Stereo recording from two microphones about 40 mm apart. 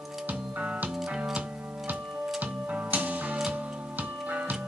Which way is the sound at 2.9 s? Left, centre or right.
Right.